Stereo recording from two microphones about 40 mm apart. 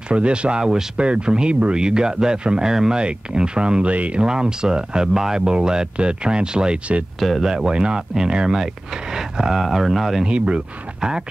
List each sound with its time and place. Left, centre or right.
0.1 s speech: right
3.9 s speech: right
4.2 s speech: right
7.2 s speech: centre
7.4 s speech: centre
10.2 s speech: right